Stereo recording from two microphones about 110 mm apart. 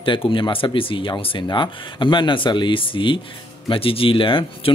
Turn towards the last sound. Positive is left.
turn(degrees=50)  # may be behind; listen again after turning